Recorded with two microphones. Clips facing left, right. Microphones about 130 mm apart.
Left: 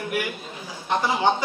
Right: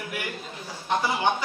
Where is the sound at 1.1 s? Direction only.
25° left (ahead or behind).